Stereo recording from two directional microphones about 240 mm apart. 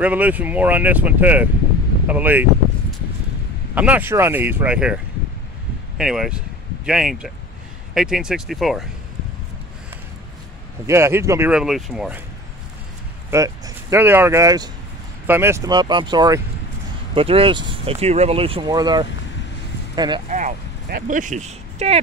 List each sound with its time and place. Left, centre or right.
0.0 s speech: centre
3.7 s speech: centre
10.9 s speech: centre
13.3 s speech: centre
20.2 s speech: right